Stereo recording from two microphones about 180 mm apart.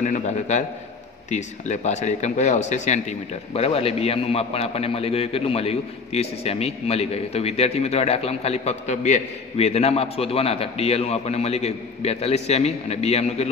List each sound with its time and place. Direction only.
0.0 s speech: 40° left (ahead or behind)